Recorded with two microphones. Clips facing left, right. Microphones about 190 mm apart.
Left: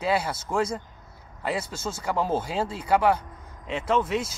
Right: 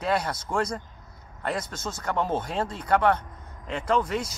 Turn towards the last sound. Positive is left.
turn(degrees=5)  # may be behind; listen again after turning